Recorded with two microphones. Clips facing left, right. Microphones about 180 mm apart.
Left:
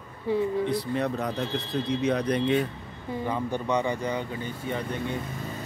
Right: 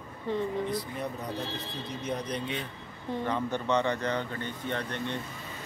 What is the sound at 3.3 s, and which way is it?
Speech, 10° left (ahead or behind).